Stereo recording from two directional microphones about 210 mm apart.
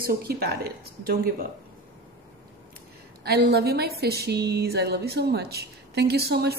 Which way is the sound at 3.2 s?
50° right (ahead or behind).